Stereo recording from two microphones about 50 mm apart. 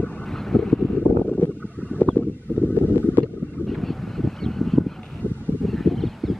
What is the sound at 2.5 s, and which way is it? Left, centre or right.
Wind noise, left.